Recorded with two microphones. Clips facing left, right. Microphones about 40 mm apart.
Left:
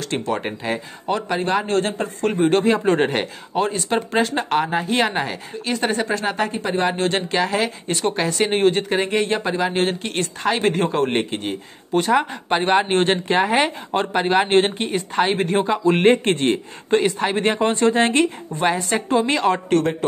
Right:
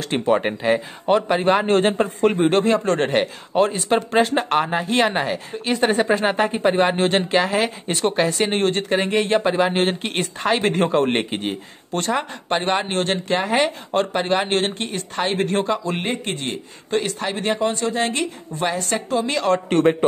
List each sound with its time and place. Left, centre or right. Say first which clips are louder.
0.1 s speech: right 6 dB; centre
1.6 s a man's voice: right 4 dB; right
2.2 s speech: even; centre
2.8 s speech: left 2 dB; centre
3.1 s speech: right 3 dB; centre
11.9 s speech: left 5 dB; centre
12.9 s speech: left 3 dB; left
16.0 s a man's voice: left 9 dB; left
16.9 s speech: left 4 dB; centre
17.4 s speech: left 3 dB; left
18.6 s a woman's voice: left 3 dB; centre
19.8 s a man's voice: right 5 dB; right